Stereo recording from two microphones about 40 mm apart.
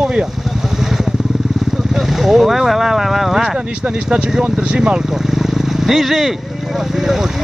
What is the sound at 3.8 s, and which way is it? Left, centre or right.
Speech, right.